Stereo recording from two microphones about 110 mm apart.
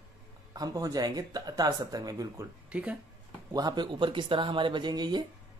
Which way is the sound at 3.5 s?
40° right (ahead or behind).